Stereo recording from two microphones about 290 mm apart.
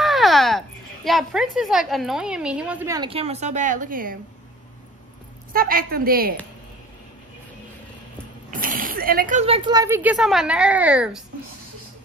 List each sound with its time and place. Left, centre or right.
0.0 s a child's voice: centre; by 4.2 s right
5.5 s a woman's voice: right
8.5 s speech: right; by 11.2 s centre